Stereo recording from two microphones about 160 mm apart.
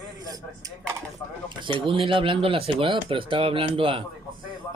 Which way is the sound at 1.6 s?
30° right (ahead or behind).